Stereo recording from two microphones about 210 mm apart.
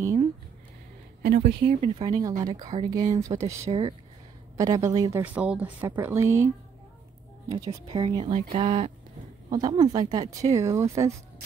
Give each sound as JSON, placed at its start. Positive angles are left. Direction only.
{"t": 0.0, "sound": "a sound", "side_deg": -15}
{"t": 1.4, "sound": "speech", "side_deg": -25}
{"t": 2.0, "sound": "a woman's voice", "side_deg": -15}
{"t": 4.6, "sound": "a woman's voice", "side_deg": -15}